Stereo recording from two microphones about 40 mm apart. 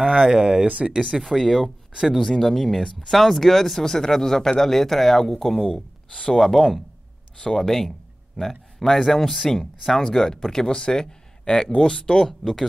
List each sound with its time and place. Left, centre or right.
0.3 s speech: centre
0.7 s speech: right
0.9 s speech: centre
1.2 s speech: centre
12.2 s speech: centre